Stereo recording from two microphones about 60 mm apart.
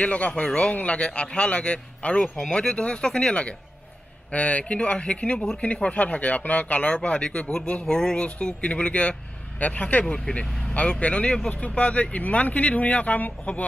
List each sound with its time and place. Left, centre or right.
0.0 s speech: left
7.8 s speech: centre